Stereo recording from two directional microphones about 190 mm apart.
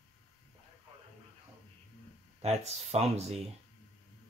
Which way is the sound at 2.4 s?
35° right (ahead or behind).